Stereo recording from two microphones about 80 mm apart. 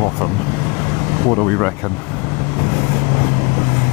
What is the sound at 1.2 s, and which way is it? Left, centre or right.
Speech, left.